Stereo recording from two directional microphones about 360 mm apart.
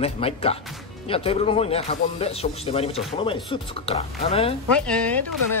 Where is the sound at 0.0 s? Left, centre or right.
Centre.